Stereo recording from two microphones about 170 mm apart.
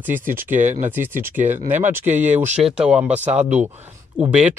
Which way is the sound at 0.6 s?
45° right (ahead or behind).